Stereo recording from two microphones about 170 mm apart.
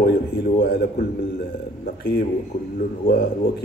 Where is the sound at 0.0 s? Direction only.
65° left (ahead or behind).